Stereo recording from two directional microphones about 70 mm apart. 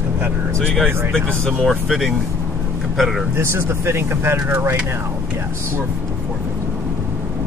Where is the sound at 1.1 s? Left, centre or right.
Centre.